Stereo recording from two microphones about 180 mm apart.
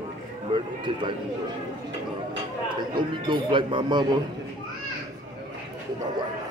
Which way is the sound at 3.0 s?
25° right (ahead or behind).